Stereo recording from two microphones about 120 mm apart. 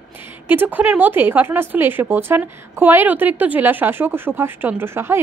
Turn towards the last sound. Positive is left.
turn(degrees=-20)  # may be behind; listen again after turning